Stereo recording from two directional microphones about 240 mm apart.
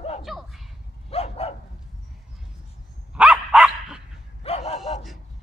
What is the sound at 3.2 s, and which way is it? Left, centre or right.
Dog, centre.